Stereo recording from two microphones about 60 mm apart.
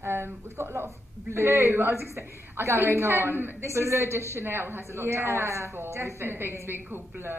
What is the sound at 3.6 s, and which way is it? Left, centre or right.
A woman's voice, right.